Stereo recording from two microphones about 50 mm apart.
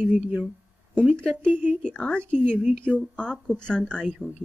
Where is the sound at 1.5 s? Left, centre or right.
Right.